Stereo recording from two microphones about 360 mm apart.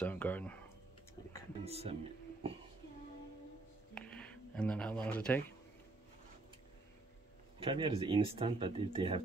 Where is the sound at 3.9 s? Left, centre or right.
Centre.